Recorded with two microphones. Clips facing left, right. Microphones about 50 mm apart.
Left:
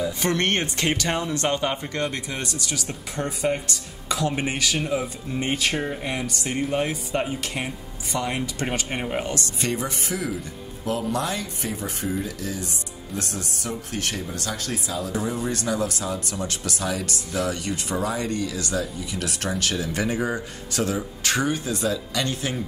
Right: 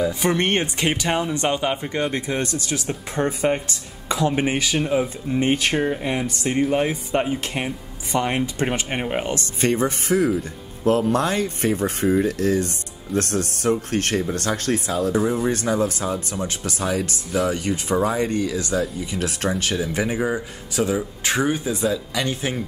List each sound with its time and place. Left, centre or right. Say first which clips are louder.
0.2 s speech: right 3 dB; centre; by 15.1 s right
15.1 s speech: right 4 dB; right
19.7 s speech: right 2 dB; centre